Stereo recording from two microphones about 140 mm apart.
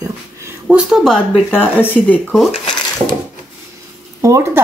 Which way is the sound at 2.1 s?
5° right (ahead or behind).